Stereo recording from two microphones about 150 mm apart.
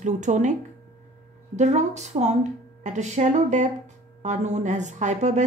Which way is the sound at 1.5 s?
50° right (ahead or behind).